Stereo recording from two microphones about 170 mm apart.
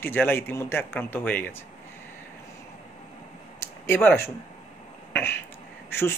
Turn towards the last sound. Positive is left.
turn(degrees=15)  # may be behind; listen again after turning